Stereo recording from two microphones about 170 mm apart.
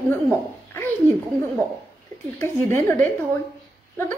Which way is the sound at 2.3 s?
15° left (ahead or behind).